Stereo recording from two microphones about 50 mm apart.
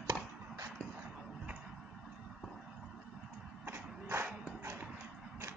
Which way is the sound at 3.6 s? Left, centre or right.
Right.